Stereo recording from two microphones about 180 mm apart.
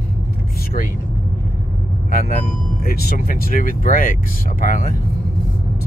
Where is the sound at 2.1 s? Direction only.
55° left (ahead or behind).